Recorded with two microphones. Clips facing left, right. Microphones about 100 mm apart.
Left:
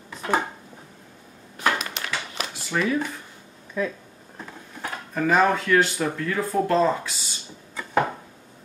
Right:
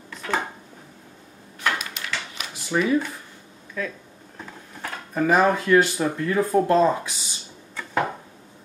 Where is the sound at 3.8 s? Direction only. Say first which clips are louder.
Left 4 dB; 20° left (ahead or behind).